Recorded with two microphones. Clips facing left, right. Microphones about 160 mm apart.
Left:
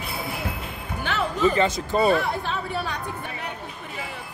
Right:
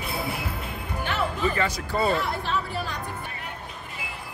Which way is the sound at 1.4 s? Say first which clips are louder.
Left 5 dB; 25° left (ahead or behind).